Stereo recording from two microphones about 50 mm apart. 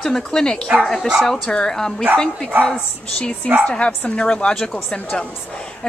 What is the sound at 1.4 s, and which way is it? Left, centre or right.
Speech, centre.